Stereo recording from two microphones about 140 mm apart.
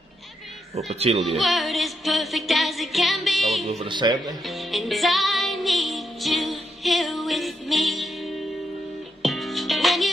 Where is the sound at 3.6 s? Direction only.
50° right (ahead or behind).